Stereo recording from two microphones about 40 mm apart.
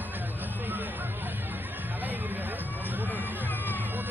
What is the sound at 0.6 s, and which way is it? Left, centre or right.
Hubbub, right.